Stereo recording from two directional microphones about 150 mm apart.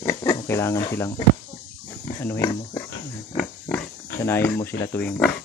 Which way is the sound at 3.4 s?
10° left (ahead or behind).